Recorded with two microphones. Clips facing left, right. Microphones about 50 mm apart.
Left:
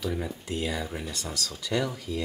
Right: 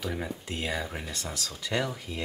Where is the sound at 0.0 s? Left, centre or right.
Centre.